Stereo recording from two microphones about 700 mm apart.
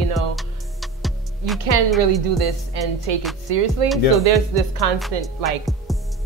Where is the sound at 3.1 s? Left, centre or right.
Right.